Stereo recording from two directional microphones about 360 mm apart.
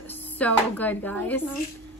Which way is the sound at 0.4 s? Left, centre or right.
Centre.